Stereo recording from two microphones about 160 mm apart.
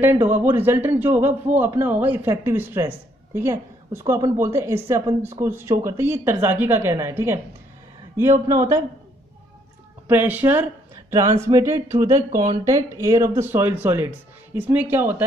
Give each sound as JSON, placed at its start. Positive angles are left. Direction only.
{"t": 0.0, "sound": "a woman's voice", "side_deg": -15}
{"t": 8.5, "sound": "a man's voice", "side_deg": -20}
{"t": 10.0, "sound": "speech", "side_deg": -10}